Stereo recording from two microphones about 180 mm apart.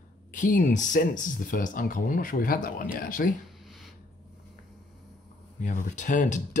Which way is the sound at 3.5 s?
Centre (ahead or behind).